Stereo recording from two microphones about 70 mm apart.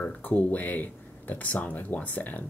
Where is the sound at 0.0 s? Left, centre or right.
Left.